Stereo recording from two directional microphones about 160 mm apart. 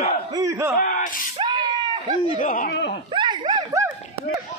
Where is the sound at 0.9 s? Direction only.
60° left (ahead or behind).